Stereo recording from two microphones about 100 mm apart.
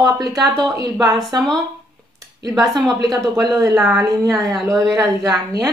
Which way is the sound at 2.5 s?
35° right (ahead or behind).